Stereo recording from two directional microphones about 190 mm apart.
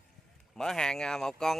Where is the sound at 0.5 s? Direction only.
5° left (ahead or behind).